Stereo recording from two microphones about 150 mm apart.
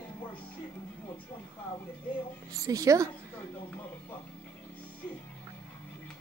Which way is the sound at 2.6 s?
20° right (ahead or behind).